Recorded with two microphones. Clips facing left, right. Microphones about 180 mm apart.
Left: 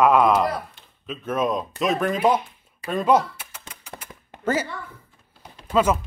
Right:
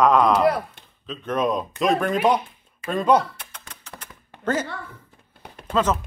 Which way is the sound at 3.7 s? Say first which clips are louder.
Left 2 dB; 10° left (ahead or behind).